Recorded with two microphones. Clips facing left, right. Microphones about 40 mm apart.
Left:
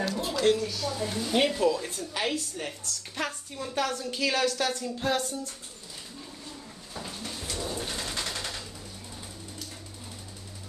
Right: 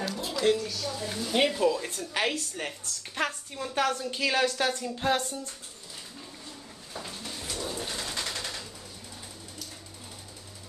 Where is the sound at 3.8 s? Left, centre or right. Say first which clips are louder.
Right 1 dB; right.